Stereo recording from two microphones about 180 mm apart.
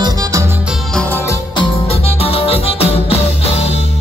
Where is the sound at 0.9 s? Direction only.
10° left (ahead or behind).